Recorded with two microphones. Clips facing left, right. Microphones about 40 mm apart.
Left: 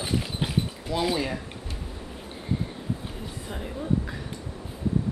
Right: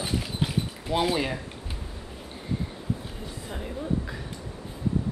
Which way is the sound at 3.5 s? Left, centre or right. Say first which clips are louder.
Left 2 dB; centre.